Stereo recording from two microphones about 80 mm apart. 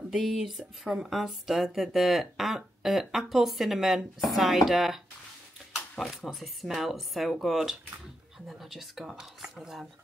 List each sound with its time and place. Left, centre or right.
0.1 s speech: centre